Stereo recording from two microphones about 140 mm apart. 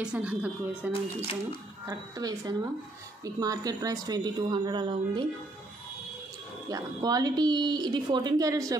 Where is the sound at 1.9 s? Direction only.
25° right (ahead or behind).